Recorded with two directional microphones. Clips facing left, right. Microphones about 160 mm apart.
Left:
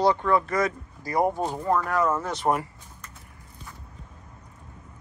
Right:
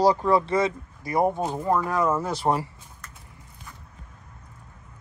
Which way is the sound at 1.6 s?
15° right (ahead or behind).